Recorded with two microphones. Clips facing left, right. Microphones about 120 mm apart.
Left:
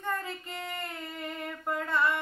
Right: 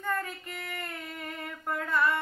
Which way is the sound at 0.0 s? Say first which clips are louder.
Right 1 dB; 15° left (ahead or behind).